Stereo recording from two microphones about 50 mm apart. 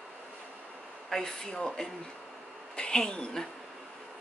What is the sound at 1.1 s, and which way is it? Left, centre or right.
Speech, centre.